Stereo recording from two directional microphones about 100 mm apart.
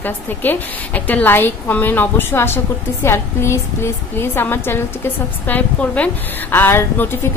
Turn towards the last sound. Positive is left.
turn(degrees=25)  # may be behind; listen again after turning